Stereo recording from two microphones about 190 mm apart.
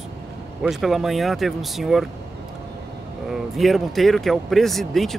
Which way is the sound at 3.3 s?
Centre (ahead or behind).